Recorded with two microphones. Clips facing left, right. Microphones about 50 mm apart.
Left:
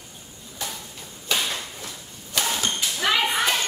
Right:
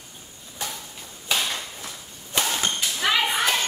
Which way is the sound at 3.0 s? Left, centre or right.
Centre.